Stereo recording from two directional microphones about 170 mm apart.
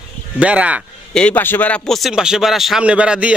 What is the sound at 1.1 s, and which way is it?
A man's voice, 10° left (ahead or behind).